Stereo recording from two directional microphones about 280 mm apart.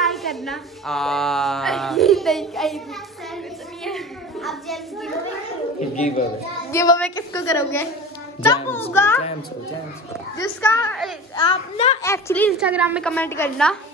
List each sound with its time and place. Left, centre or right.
0.0 s a woman's voice: centre
3.8 s a sound: centre
5.8 s speech: left
6.7 s a woman's voice: centre
8.9 s a woman's voice: centre
10.6 s a woman's voice: centre
11.3 s a woman's voice: centre
12.0 s a woman's voice: centre